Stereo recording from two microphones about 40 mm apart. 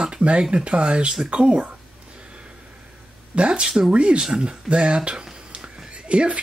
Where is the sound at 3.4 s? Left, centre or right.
Right.